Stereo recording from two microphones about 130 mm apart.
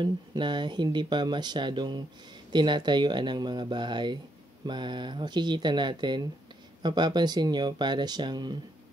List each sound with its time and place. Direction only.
0.0 s speech: 35° right (ahead or behind)